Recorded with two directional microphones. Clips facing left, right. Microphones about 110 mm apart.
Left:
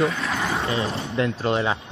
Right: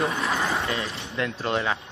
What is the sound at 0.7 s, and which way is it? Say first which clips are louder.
Speech: left 5 dB; 30° left (ahead or behind).